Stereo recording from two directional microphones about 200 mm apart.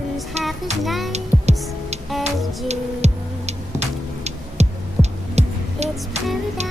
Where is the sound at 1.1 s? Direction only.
35° right (ahead or behind).